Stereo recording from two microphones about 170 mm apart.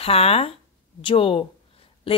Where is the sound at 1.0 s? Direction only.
30° left (ahead or behind).